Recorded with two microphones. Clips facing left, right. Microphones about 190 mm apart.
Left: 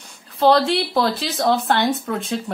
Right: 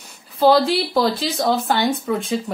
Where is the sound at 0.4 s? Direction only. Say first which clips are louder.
Right 1 dB; centre (ahead or behind).